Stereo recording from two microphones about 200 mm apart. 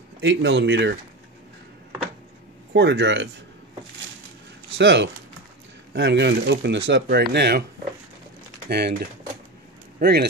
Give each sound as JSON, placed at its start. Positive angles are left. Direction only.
{"t": 0.2, "sound": "speech", "side_deg": -60}
{"t": 2.7, "sound": "speech", "side_deg": -60}
{"t": 4.7, "sound": "speech", "side_deg": -60}
{"t": 8.6, "sound": "speech", "side_deg": -55}